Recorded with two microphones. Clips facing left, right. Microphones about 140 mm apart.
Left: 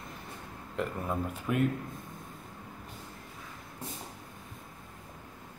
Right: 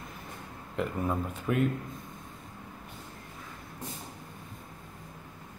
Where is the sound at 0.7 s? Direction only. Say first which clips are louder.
Right 2 dB; centre (ahead or behind).